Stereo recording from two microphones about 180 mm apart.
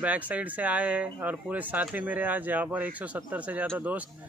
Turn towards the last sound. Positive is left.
turn(degrees=-10)  # may be behind; listen again after turning